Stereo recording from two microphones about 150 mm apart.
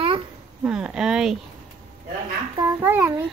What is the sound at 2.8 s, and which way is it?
Speech, 15° right (ahead or behind).